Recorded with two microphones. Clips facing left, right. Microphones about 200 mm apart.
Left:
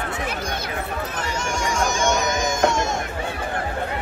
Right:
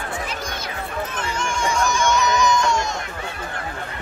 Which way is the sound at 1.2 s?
40° left (ahead or behind).